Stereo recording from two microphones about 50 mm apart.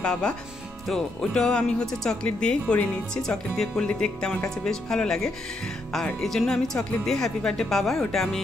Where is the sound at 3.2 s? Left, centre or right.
Centre.